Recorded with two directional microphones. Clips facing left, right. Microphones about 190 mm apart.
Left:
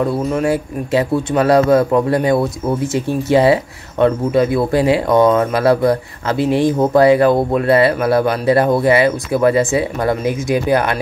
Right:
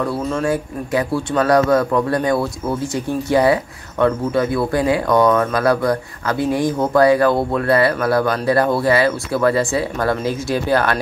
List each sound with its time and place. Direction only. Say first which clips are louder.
0.0 s speech: left 3 dB; 20° left (ahead or behind)